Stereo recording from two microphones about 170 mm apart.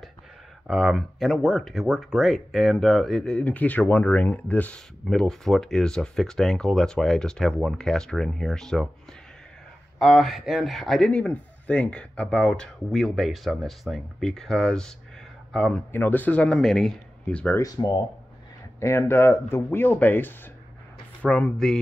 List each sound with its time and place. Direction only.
0.7 s speech: centre (ahead or behind)
9.9 s speech: centre (ahead or behind)
17.6 s speech: 20° left (ahead or behind); by 21.7 s 5° left (ahead or behind)